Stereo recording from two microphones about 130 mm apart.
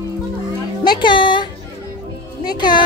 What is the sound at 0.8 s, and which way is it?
Music, 35° left (ahead or behind).